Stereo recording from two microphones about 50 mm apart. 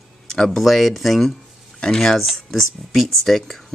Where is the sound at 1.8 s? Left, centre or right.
Centre.